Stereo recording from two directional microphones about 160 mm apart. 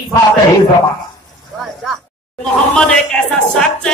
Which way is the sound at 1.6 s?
Centre (ahead or behind).